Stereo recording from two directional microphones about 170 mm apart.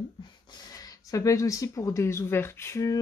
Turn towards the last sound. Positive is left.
turn(degrees=20)  # may be behind; listen again after turning